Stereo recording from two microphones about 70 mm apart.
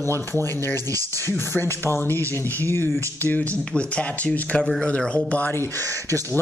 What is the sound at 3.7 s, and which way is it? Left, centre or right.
Speech, centre.